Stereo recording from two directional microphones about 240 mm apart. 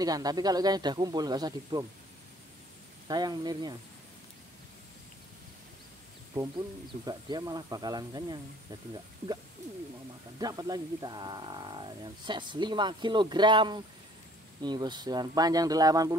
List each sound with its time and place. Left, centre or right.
0.0 s speech: centre
3.1 s speech: centre
7.1 s speech: centre
10.4 s speech: centre